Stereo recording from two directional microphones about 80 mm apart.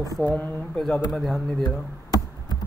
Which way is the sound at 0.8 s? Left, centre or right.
Centre.